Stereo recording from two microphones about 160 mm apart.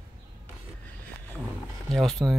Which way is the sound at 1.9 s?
Centre (ahead or behind).